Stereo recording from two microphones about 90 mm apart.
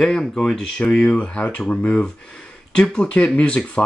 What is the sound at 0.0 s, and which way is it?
Speech, 5° left (ahead or behind).